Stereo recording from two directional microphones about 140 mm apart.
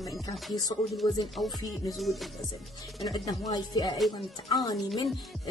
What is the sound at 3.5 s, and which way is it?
Speech, 30° left (ahead or behind).